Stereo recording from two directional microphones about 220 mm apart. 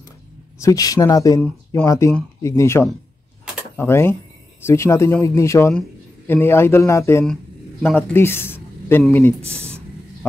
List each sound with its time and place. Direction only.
0.6 s a man's voice: 15° left (ahead or behind)